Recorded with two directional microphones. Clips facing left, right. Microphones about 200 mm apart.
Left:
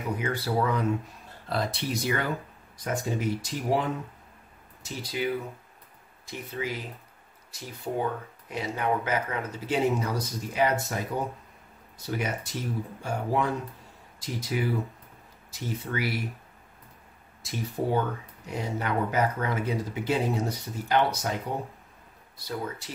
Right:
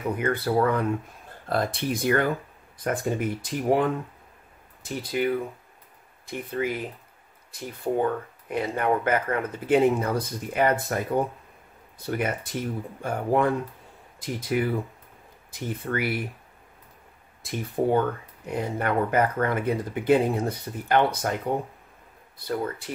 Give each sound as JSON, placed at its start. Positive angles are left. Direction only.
{"t": 0.2, "sound": "speech", "side_deg": -55}
{"t": 12.0, "sound": "speech", "side_deg": -55}
{"t": 17.4, "sound": "speech", "side_deg": -55}
{"t": 22.4, "sound": "speech", "side_deg": -55}